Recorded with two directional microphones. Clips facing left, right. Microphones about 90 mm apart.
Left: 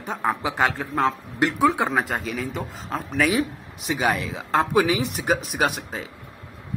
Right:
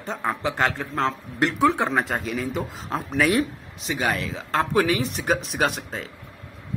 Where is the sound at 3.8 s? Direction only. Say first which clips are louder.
Left 2 dB; 15° left (ahead or behind).